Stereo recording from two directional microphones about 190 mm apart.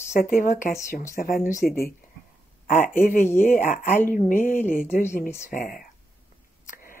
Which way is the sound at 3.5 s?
45° left (ahead or behind).